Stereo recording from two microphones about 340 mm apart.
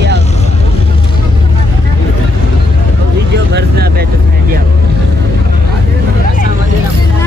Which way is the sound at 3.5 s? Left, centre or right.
Right.